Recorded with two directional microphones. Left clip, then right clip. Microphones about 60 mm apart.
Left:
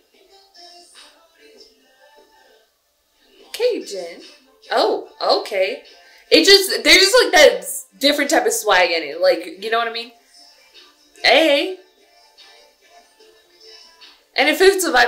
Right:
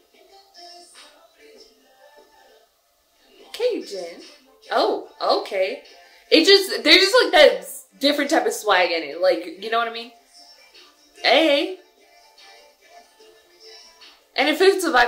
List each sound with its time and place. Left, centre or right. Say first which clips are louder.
0.3 s music: even; right
3.5 s a woman's voice: left 3 dB; centre
5.8 s music: left 2 dB; right
6.2 s a woman's voice: left 3 dB; centre
10.0 s music: left 2 dB; right
11.1 s speech: left 3 dB; centre
12.4 s music: left 1 dB; right
14.3 s a woman's voice: left 3 dB; centre